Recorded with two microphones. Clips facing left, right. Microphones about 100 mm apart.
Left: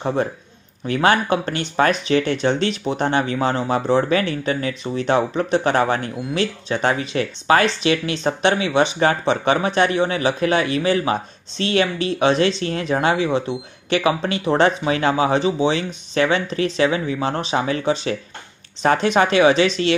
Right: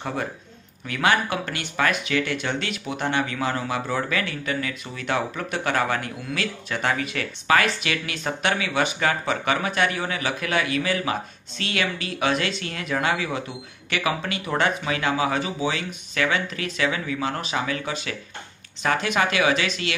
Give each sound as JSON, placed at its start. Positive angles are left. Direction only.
{"t": 0.0, "sound": "speech", "side_deg": 30}